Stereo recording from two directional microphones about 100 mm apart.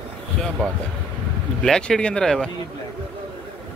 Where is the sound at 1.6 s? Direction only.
5° left (ahead or behind).